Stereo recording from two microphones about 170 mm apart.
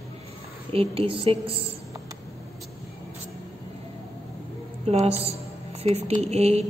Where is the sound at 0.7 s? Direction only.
35° right (ahead or behind).